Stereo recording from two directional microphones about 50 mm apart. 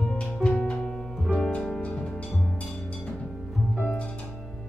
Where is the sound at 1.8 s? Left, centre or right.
Centre.